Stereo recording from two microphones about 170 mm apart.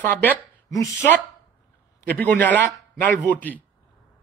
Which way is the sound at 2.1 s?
10° left (ahead or behind).